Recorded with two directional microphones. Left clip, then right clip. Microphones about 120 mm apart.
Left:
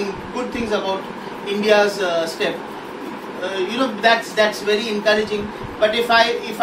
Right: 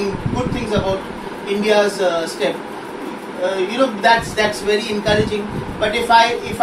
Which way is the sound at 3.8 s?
Centre (ahead or behind).